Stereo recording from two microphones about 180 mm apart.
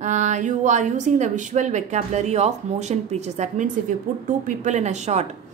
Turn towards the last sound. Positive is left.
turn(degrees=-40)  # may be behind; listen again after turning